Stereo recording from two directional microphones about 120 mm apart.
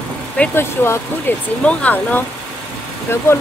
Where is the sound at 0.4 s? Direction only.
20° left (ahead or behind).